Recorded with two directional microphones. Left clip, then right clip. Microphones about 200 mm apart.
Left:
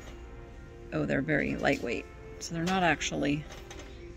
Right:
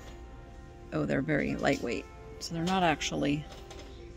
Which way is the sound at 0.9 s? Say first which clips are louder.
Left 1 dB; 10° right (ahead or behind).